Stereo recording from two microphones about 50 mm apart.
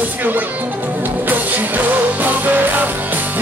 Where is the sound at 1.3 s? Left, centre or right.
Right.